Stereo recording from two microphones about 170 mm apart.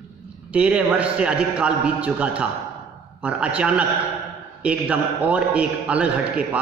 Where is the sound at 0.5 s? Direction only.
5° right (ahead or behind).